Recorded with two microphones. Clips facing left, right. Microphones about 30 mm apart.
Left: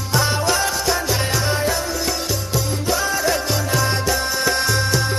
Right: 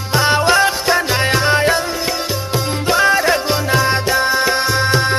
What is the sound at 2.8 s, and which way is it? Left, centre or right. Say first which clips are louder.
Music: right 8 dB; right.